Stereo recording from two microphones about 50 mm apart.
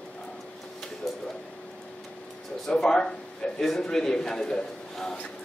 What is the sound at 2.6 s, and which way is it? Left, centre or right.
A man's voice, centre.